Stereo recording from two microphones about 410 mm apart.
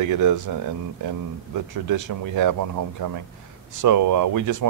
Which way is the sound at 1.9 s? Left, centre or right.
Right.